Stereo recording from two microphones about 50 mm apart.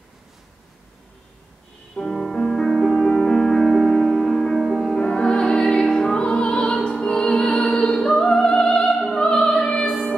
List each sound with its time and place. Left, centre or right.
2.0 s music: centre
4.9 s music: centre